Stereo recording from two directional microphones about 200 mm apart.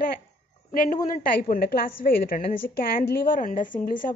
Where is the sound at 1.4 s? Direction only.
50° left (ahead or behind).